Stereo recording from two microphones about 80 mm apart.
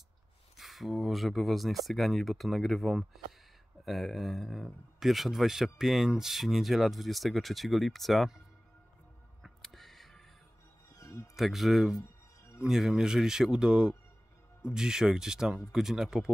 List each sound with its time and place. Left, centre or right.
0.6 s speech: centre
9.6 s a sound: centre
11.0 s music: left
11.3 s speech: centre